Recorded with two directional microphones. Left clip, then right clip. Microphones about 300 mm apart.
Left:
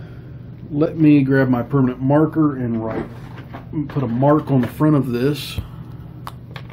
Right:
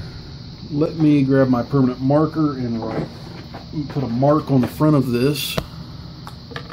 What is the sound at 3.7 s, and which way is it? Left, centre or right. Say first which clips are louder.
Speech: left 3 dB; centre.